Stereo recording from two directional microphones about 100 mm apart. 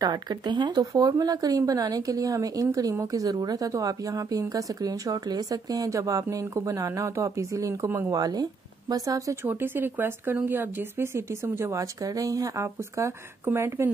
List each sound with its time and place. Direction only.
0.0 s speech: 45° right (ahead or behind); by 8.1 s 25° right (ahead or behind)
8.1 s speech: 40° right (ahead or behind)
9.4 s speech: 20° right (ahead or behind)